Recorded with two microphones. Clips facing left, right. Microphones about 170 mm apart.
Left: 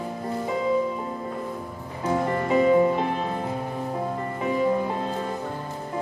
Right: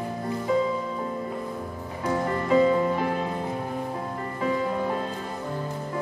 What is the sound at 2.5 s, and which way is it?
Music, 20° left (ahead or behind).